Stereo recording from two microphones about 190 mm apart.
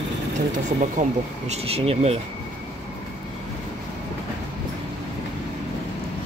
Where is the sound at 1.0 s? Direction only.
40° right (ahead or behind).